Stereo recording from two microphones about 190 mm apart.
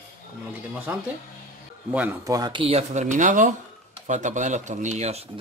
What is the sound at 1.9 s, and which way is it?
Speech, 10° right (ahead or behind).